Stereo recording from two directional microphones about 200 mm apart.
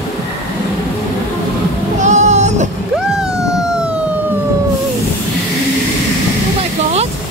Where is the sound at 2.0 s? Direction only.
35° right (ahead or behind).